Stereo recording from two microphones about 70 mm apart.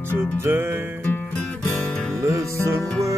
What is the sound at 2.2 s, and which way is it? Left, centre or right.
Music, right.